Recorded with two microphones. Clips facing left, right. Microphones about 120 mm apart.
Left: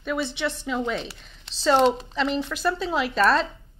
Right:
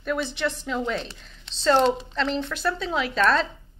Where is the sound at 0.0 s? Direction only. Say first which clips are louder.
Even; centre (ahead or behind).